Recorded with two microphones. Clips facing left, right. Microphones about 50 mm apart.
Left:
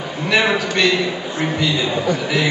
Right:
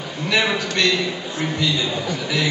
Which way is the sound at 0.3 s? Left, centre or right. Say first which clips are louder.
Left 3 dB; centre.